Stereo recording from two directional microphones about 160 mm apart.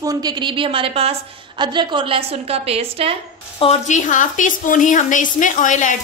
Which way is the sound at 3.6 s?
45° left (ahead or behind).